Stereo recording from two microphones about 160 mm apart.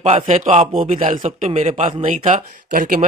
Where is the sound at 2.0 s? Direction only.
50° right (ahead or behind).